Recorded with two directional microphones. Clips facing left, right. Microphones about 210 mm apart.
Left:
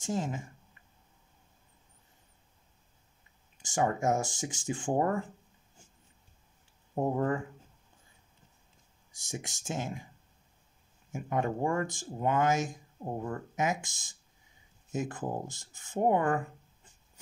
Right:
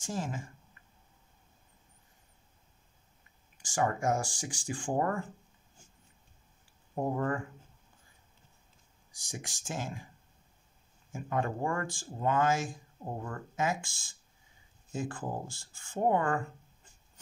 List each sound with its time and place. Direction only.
0.0 s speech: 20° left (ahead or behind)
3.6 s speech: 20° left (ahead or behind)
7.0 s speech: 20° left (ahead or behind)
9.1 s speech: 25° left (ahead or behind)
11.1 s speech: 20° left (ahead or behind)